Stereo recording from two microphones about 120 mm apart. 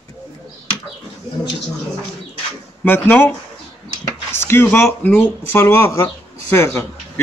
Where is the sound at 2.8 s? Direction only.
15° left (ahead or behind).